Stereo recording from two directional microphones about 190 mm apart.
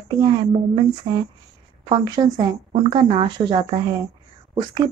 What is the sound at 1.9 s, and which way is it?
A woman's voice, 20° right (ahead or behind).